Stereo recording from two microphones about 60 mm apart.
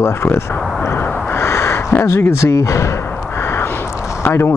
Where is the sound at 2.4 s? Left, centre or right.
Left.